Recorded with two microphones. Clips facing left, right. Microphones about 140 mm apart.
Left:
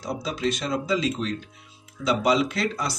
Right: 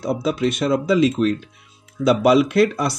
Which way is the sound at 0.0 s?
60° right (ahead or behind).